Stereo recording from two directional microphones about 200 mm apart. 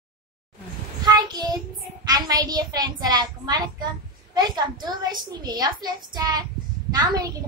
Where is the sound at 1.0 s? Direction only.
20° right (ahead or behind).